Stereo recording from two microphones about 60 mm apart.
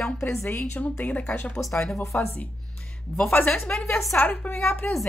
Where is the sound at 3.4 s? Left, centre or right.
Centre.